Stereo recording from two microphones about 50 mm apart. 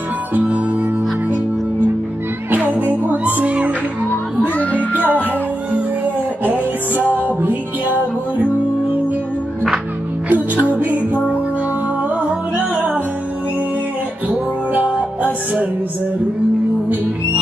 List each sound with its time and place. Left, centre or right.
0.3 s harmonica: right
2.5 s music: right
3.4 s music: right
4.6 s music: left
6.4 s music: right
10.3 s music: right
12.2 s music: right
14.3 s music: right